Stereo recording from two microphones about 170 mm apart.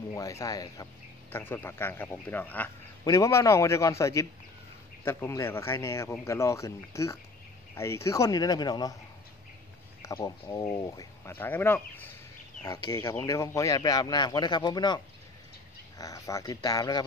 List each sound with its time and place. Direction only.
0.1 s speech: 15° left (ahead or behind)
10.0 s speech: 20° left (ahead or behind)
16.0 s speech: 20° left (ahead or behind)